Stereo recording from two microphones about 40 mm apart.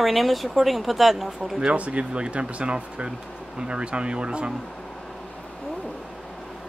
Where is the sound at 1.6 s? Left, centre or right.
Right.